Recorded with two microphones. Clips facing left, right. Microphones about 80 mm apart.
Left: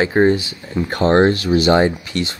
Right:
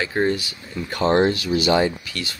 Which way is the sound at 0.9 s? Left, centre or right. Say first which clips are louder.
Left 4 dB; left.